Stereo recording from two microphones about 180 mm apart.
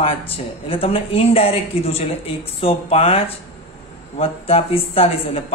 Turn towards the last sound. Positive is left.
turn(degrees=30)  # may be behind; listen again after turning